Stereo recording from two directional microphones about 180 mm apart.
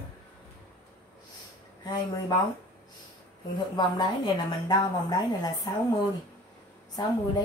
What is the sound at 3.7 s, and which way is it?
A woman's voice, 25° left (ahead or behind).